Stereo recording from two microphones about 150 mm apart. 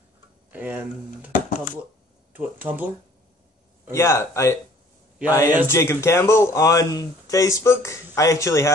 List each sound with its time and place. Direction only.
0.5 s speech: 10° right (ahead or behind)
1.3 s dishes: 60° left (ahead or behind)
2.3 s speech: 10° right (ahead or behind)
3.9 s speech: 20° left (ahead or behind)
5.7 s speech: 20° left (ahead or behind)